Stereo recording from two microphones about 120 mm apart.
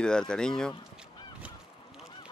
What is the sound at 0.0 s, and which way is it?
Speech, 5° left (ahead or behind).